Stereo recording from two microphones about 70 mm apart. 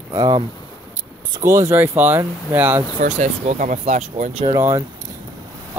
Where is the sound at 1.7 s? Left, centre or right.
Right.